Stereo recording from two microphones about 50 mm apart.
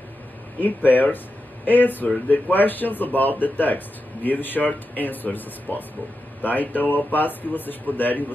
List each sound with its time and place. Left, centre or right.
0.6 s speech: left